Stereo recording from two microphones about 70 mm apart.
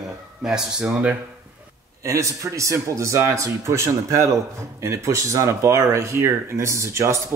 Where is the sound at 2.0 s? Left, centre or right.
Right.